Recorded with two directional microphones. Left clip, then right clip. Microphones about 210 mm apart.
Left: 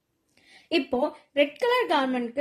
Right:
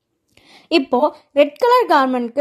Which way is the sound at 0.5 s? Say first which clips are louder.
Right 10 dB; 35° right (ahead or behind).